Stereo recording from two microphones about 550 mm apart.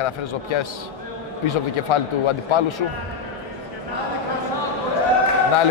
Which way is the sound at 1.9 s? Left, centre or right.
Left.